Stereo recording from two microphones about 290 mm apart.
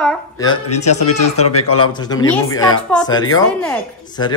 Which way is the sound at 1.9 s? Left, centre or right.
Centre.